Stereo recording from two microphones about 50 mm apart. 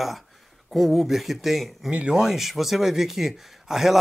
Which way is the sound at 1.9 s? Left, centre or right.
Right.